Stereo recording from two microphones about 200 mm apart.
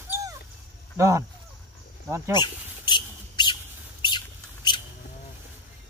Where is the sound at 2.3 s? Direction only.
25° left (ahead or behind).